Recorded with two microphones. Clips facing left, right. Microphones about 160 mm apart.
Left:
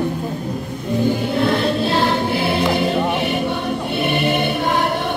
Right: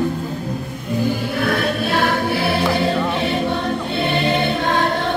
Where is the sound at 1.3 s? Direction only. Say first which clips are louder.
Left 2 dB; 25° left (ahead or behind).